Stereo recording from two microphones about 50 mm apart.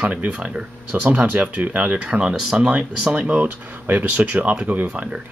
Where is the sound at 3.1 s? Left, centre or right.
Right.